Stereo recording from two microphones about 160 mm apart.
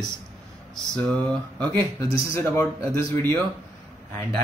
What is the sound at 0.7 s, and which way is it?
Speech, 5° left (ahead or behind).